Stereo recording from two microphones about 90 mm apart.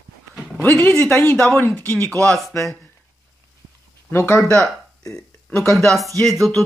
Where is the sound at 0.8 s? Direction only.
15° left (ahead or behind).